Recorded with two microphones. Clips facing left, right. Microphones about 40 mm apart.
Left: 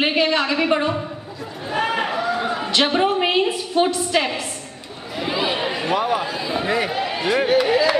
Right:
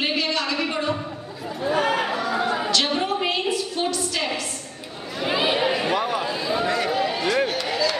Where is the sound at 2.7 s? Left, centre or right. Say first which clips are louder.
Left 4 dB; left.